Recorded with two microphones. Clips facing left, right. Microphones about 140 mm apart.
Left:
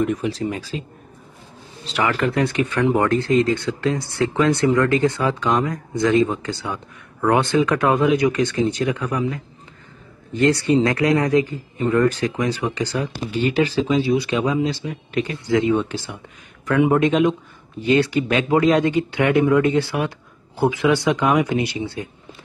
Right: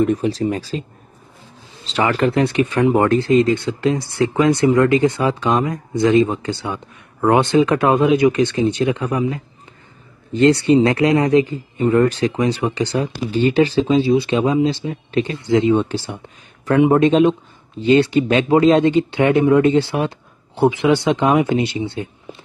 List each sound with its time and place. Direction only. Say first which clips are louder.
0.0 s speech: right 4 dB; 35° right (ahead or behind)
1.9 s speech: right 3 dB; 30° right (ahead or behind)